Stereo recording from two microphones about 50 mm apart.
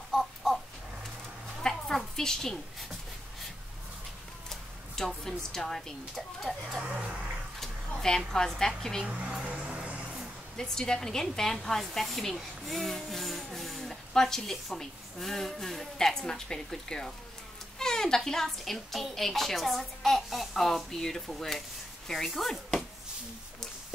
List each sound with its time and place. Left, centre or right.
0.1 s a sound: centre
1.6 s a sound: centre
4.5 s a woman's voice: centre
6.8 s speech: centre
8.3 s speech: centre
9.5 s music: right
10.6 s speech: centre
20.6 s speech: centre